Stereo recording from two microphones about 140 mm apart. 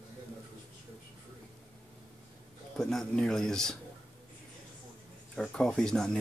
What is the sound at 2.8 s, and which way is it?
Speech, 5° left (ahead or behind).